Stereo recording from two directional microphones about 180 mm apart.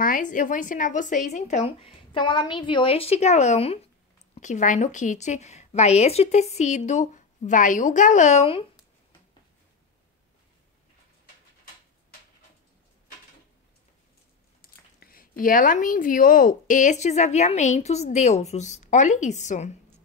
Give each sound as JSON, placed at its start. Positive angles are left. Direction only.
{"t": 0.0, "sound": "speech", "side_deg": 50}
{"t": 14.6, "sound": "speech", "side_deg": 55}